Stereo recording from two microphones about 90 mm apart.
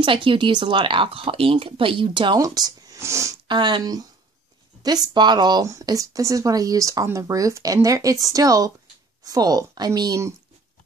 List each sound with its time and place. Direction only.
0.0 s speech: 70° right (ahead or behind)
2.3 s speech: 45° right (ahead or behind)
3.0 s speech: 30° right (ahead or behind)
3.4 s speech: 55° right (ahead or behind)
5.7 s speech: 40° right (ahead or behind)